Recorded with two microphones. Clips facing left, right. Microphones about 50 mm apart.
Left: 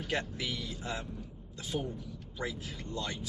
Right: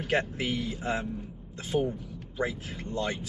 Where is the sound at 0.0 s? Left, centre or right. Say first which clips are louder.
Right 6 dB; right.